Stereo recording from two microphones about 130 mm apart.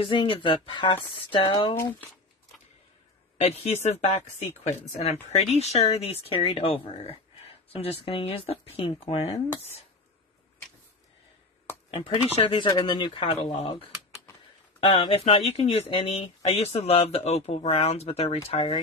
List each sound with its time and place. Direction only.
0.0 s speech: 40° left (ahead or behind)
3.3 s speech: 50° left (ahead or behind)
11.9 s speech: 45° left (ahead or behind)